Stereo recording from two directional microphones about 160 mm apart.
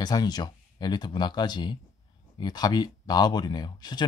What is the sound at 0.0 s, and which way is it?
Speech, 25° left (ahead or behind).